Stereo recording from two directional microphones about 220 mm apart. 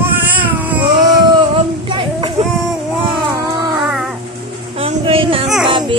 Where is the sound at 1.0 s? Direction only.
25° right (ahead or behind).